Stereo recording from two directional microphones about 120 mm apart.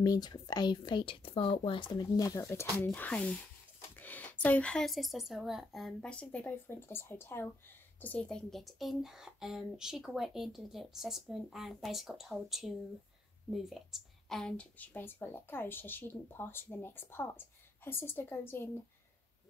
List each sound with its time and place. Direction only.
0.0 s speech: 35° left (ahead or behind)
2.9 s a woman's voice: 10° left (ahead or behind)